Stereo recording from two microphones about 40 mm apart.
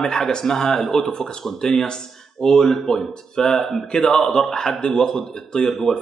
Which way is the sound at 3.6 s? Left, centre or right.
Centre.